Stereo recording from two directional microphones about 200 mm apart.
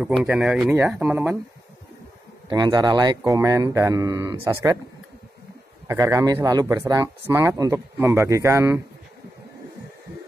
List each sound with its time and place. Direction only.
0.0 s speech: 5° right (ahead or behind)
2.5 s speech: 20° right (ahead or behind)
5.9 s speech: 15° right (ahead or behind)